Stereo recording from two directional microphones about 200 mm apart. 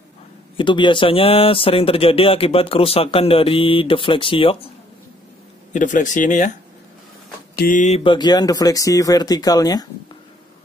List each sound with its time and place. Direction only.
0.6 s speech: 25° left (ahead or behind)
5.7 s speech: 40° left (ahead or behind)
7.5 s speech: 40° left (ahead or behind); by 9.8 s 20° left (ahead or behind)